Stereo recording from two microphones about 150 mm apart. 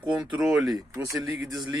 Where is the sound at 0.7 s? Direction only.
20° right (ahead or behind).